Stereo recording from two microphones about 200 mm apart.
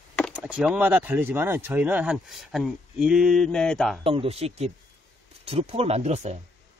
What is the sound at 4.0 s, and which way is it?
Speech, 25° right (ahead or behind).